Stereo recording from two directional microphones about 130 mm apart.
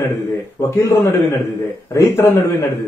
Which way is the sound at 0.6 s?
20° left (ahead or behind).